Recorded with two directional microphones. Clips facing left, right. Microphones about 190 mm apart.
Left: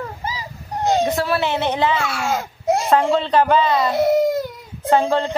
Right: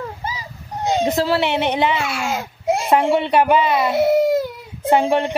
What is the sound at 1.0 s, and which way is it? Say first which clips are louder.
A child's voice: right 2 dB; 25° right (ahead or behind).